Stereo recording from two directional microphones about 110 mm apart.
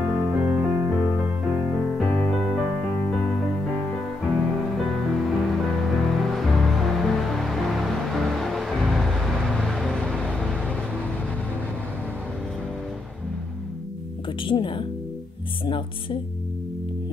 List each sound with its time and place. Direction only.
0.1 s music: 15° right (ahead or behind)
2.0 s music: 5° left (ahead or behind)
4.4 s music: centre (ahead or behind)
14.4 s speech: 50° left (ahead or behind)